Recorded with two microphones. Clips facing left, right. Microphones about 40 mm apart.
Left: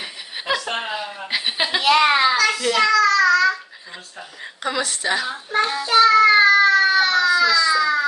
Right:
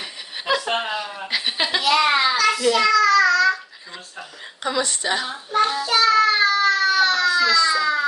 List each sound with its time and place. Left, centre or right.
0.6 s chuckle: centre
0.9 s chuckle: centre
1.8 s a sound: left
2.3 s child singing: centre
2.6 s a child's voice: centre
2.9 s child singing: centre
4.6 s speech: centre
5.7 s child singing: left
6.3 s baby cry: centre
7.2 s baby cry: centre